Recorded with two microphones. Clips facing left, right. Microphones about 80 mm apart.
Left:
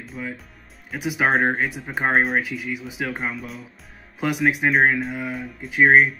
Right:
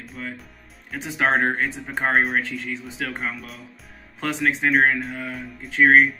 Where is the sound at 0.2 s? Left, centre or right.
Centre.